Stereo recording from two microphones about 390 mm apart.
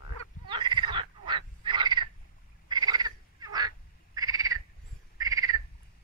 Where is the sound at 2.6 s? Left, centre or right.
Centre.